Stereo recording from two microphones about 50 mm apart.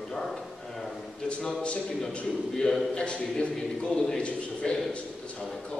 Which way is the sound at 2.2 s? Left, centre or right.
Centre.